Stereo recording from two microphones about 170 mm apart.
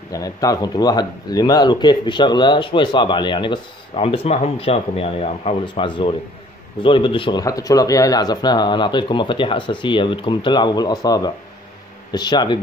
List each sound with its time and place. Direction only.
0.1 s speech: 20° left (ahead or behind)